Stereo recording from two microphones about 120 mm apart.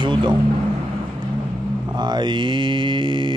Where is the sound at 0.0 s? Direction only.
40° right (ahead or behind).